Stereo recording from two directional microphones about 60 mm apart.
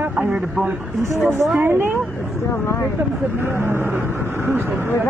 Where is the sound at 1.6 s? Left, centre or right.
Right.